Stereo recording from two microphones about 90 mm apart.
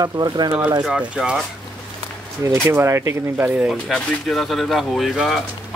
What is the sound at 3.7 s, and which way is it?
Speech, centre (ahead or behind).